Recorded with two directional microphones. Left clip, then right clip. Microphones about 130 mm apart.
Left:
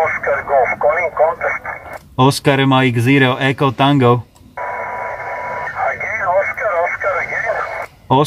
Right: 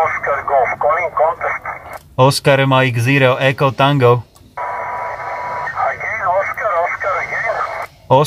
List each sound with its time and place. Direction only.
0.0 s a sound: 25° left (ahead or behind)
2.1 s speech: 10° right (ahead or behind)
4.6 s radio: 30° left (ahead or behind)